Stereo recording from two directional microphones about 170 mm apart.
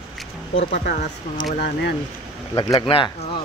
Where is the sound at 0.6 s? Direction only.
65° left (ahead or behind).